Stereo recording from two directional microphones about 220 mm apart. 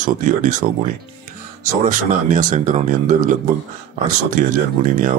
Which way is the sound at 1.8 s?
35° right (ahead or behind).